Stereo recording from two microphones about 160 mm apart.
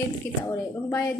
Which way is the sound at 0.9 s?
25° left (ahead or behind).